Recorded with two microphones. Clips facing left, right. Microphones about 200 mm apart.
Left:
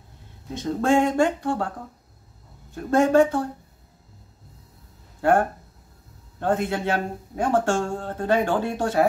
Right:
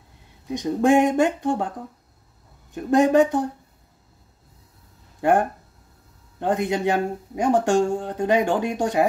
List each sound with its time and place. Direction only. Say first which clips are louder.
0.5 s speech: right 3 dB; 15° right (ahead or behind)
2.7 s speech: right 1 dB; 15° right (ahead or behind)
5.2 s speech: even; 15° right (ahead or behind)